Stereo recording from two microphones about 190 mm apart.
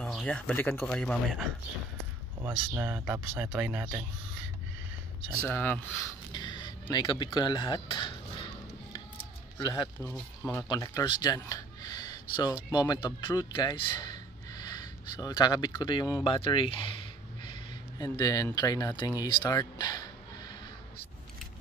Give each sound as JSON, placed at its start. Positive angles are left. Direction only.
{"t": 0.0, "sound": "speech", "side_deg": 5}
{"t": 2.7, "sound": "speech", "side_deg": -10}
{"t": 5.5, "sound": "speech", "side_deg": 10}
{"t": 6.3, "sound": "speech", "side_deg": 25}
{"t": 9.6, "sound": "speech", "side_deg": 20}
{"t": 10.0, "sound": "speech", "side_deg": 10}
{"t": 19.2, "sound": "a sound", "side_deg": 20}